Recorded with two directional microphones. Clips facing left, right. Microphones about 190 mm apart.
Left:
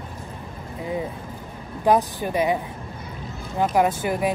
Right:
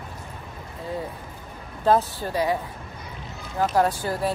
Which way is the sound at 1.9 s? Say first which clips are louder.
Left 1 dB; 15° left (ahead or behind).